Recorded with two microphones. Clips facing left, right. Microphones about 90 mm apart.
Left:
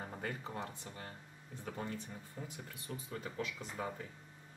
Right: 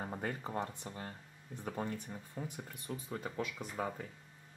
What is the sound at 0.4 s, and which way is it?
Speech, 30° right (ahead or behind).